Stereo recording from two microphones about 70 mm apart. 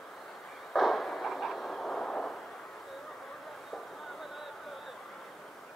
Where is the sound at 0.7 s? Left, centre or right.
Centre.